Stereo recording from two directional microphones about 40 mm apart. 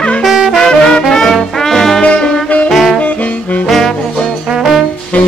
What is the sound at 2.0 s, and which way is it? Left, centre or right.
Music, left.